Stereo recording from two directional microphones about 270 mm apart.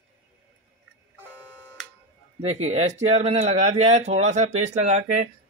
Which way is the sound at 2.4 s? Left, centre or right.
Right.